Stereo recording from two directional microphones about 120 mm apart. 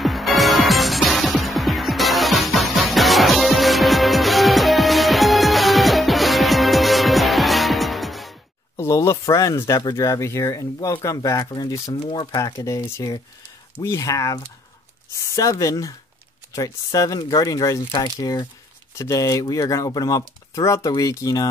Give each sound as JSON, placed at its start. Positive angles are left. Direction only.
{"t": 0.0, "sound": "music", "side_deg": 0}
{"t": 8.7, "sound": "speech", "side_deg": 25}